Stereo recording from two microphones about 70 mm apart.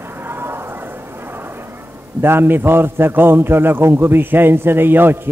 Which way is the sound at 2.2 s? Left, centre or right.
Right.